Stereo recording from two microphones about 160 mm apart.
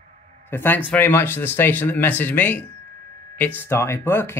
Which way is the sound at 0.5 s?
10° left (ahead or behind).